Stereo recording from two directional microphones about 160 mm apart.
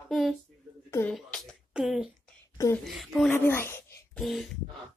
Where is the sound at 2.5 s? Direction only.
20° left (ahead or behind).